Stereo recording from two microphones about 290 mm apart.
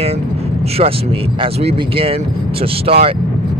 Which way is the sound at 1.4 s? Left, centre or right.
Centre.